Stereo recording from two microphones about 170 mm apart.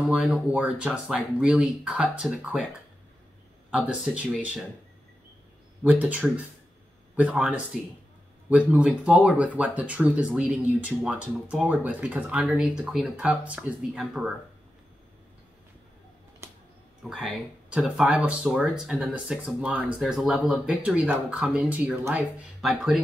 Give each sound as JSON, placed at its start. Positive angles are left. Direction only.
{"t": 0.1, "sound": "speech", "side_deg": -5}
{"t": 3.8, "sound": "speech", "side_deg": -5}
{"t": 5.9, "sound": "speech", "side_deg": -10}
{"t": 16.4, "sound": "music", "side_deg": -15}
{"t": 17.0, "sound": "speech", "side_deg": 0}